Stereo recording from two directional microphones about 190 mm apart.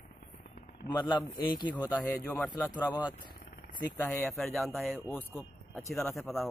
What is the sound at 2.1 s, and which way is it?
Speech, 10° left (ahead or behind).